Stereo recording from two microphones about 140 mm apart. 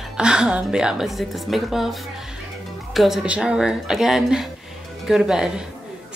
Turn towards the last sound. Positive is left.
turn(degrees=-5)  # may be behind; listen again after turning